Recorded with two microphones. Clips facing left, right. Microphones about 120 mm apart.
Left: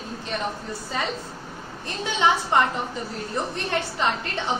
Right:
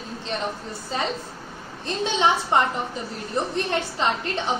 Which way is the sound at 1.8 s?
20° right (ahead or behind).